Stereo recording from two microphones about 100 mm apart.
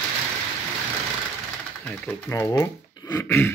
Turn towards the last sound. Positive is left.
turn(degrees=20)  # may be behind; listen again after turning